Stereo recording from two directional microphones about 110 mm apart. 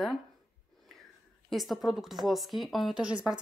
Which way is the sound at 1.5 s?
Centre (ahead or behind).